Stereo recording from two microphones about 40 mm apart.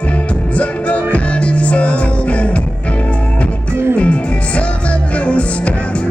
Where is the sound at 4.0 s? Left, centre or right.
Left.